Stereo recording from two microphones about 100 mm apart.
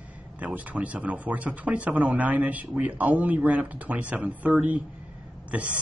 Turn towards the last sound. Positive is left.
turn(degrees=-15)  # may be behind; listen again after turning